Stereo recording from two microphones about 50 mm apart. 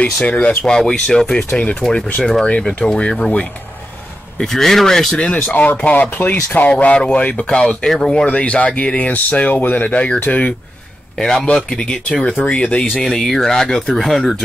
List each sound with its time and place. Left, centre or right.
0.0 s speech: left
0.7 s speech: centre
1.8 s speech: centre
5.1 s speech: left
7.5 s speech: centre
8.3 s speech: left
11.1 s speech: centre
12.9 s speech: centre